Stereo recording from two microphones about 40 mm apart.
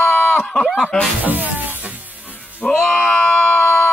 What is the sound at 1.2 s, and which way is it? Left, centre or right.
Speech, right.